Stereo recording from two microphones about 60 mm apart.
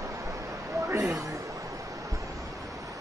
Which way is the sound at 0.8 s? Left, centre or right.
Right.